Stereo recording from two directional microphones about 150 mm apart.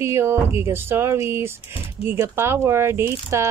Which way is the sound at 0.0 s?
15° right (ahead or behind).